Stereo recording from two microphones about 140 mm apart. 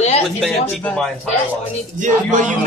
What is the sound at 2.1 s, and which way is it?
Speech, 65° right (ahead or behind).